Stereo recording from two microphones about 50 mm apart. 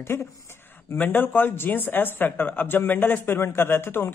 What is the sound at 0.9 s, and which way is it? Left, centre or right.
A man's voice, left.